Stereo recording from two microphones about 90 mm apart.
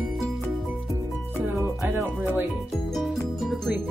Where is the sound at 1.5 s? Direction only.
30° right (ahead or behind).